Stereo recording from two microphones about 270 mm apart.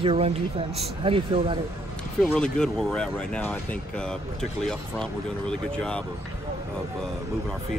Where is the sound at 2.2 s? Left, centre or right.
Centre.